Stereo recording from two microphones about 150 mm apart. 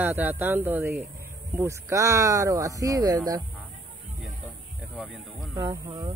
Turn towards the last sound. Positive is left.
turn(degrees=-25)  # may be behind; listen again after turning